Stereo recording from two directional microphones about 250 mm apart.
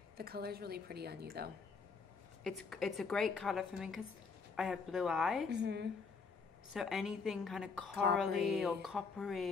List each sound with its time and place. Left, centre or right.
0.2 s speech: right
2.4 s a woman's voice: centre
5.5 s a woman's voice: right
6.7 s a woman's voice: centre